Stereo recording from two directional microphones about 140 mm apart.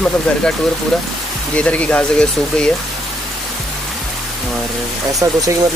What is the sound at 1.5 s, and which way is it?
Speech, 10° left (ahead or behind).